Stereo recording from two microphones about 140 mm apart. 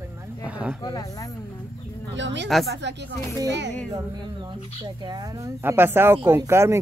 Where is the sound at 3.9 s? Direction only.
30° right (ahead or behind).